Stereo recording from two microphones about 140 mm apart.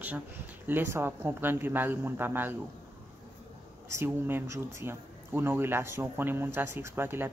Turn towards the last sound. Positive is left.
turn(degrees=-15)  # may be behind; listen again after turning